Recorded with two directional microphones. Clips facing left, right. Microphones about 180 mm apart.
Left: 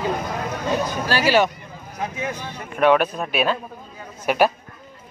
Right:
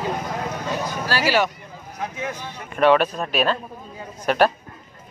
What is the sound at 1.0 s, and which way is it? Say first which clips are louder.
Speech: left 2 dB; 20° left (ahead or behind).